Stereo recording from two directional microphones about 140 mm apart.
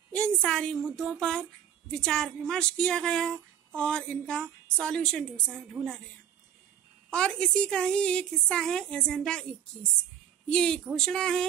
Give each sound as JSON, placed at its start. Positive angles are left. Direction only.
{"t": 0.1, "sound": "speech", "side_deg": 5}
{"t": 7.1, "sound": "speech", "side_deg": 5}